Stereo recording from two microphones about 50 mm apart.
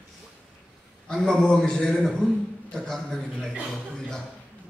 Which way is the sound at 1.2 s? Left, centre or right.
Centre.